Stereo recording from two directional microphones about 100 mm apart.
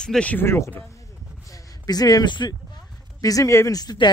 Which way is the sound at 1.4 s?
35° left (ahead or behind).